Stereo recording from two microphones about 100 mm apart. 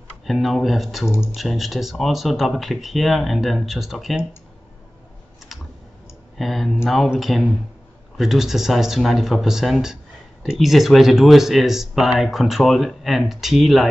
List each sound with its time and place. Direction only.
0.3 s speech: centre (ahead or behind)
1.0 s speech: 25° left (ahead or behind)
1.3 s speech: centre (ahead or behind)
5.5 s clicking: centre (ahead or behind)
6.3 s speech: centre (ahead or behind)